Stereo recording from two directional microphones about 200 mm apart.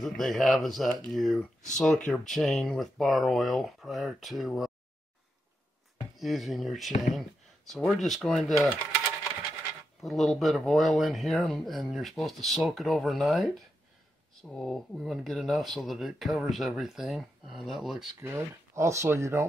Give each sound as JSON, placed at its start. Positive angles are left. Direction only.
{"t": 0.0, "sound": "speech", "side_deg": 0}
{"t": 6.1, "sound": "speech", "side_deg": 0}
{"t": 10.0, "sound": "speech", "side_deg": 0}
{"t": 18.2, "sound": "speech", "side_deg": -15}